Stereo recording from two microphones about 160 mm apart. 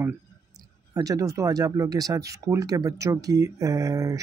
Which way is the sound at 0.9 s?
20° right (ahead or behind).